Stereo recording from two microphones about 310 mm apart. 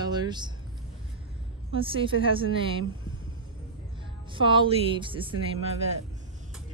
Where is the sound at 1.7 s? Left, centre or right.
Centre.